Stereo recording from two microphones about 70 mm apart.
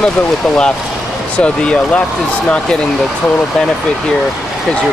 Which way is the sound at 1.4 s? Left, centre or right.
Centre.